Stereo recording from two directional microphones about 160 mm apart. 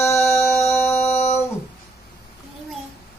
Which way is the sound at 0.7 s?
15° left (ahead or behind).